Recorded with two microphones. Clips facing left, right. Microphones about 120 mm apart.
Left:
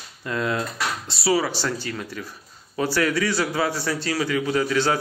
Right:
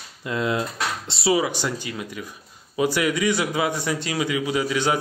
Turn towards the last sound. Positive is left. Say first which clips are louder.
# left 1 dB
turn(degrees=-15)  # may be behind; listen again after turning